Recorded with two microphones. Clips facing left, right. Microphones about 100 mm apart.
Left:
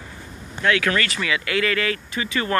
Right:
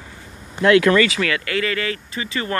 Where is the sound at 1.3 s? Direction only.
40° right (ahead or behind).